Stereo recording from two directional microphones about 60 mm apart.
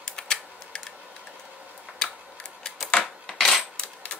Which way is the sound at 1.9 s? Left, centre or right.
Centre.